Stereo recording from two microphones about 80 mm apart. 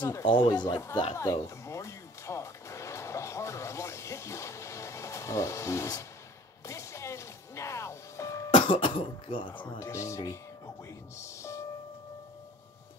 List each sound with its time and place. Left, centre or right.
0.2 s speech: left
0.5 s a man's voice: left
1.1 s music: left
8.5 s speech: left
9.8 s speech: left
11.1 s music: left